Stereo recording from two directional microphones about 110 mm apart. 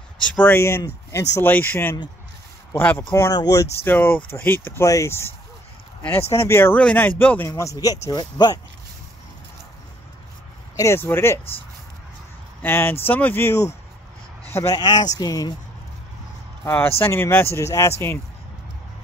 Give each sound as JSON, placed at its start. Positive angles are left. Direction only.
{"t": 0.2, "sound": "speech", "side_deg": 15}
{"t": 3.8, "sound": "speech", "side_deg": 15}
{"t": 6.3, "sound": "speech", "side_deg": 25}
{"t": 10.8, "sound": "speech", "side_deg": 20}
{"t": 12.6, "sound": "speech", "side_deg": 20}
{"t": 15.1, "sound": "speech", "side_deg": 35}
{"t": 16.6, "sound": "speech", "side_deg": 20}